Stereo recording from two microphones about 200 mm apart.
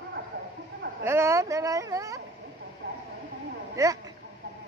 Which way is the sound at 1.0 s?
15° right (ahead or behind).